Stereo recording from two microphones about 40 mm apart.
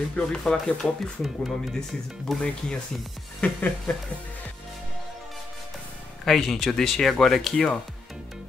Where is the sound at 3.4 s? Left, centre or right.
Left.